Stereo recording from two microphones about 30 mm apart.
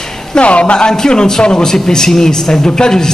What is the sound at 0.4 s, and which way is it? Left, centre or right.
Speech, left.